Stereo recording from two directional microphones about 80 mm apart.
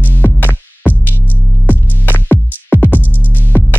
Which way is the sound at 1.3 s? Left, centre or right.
Left.